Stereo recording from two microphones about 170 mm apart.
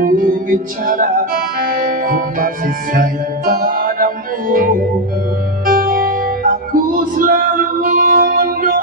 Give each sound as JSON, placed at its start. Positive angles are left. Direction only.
{"t": 0.0, "sound": "music", "side_deg": -55}
{"t": 1.6, "sound": "music", "side_deg": -60}